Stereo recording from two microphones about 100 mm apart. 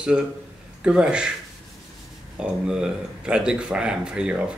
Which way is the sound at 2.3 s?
10° right (ahead or behind).